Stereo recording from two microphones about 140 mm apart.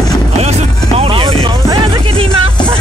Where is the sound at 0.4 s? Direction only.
45° right (ahead or behind).